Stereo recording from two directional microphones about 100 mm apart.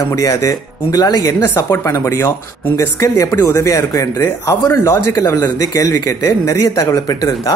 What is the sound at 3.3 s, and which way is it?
Speech, 35° left (ahead or behind).